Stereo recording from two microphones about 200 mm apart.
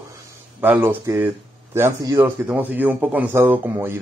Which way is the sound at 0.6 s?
10° right (ahead or behind).